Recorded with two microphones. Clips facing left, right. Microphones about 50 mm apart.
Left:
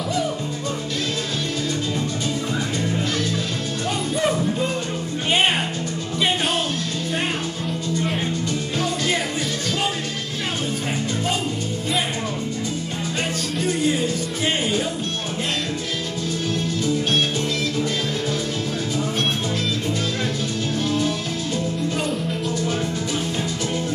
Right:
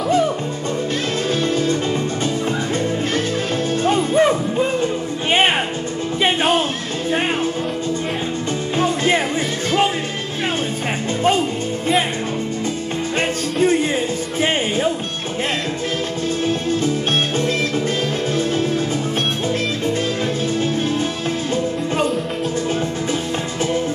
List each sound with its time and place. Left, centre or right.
3.8 s music: right
8.7 s music: right
13.6 s music: right